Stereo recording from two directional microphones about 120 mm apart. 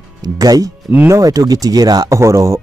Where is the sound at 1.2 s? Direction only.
30° right (ahead or behind).